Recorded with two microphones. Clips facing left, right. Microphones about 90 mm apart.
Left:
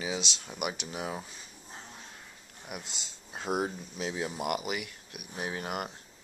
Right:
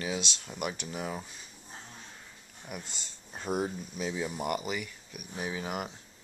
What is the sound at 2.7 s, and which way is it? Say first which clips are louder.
Speech: even; 5° left (ahead or behind).